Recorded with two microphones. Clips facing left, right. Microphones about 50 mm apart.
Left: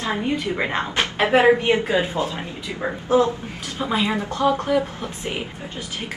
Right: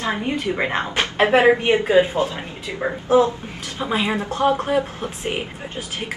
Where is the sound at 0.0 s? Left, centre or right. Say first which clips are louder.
Right 1 dB; right.